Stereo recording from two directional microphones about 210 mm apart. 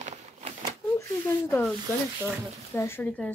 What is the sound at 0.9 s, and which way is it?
Speech, 10° left (ahead or behind).